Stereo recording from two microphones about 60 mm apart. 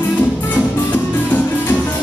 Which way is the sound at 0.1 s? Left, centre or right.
Left.